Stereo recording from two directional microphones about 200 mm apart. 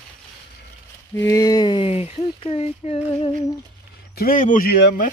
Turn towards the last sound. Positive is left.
turn(degrees=55)  # may be behind; listen again after turning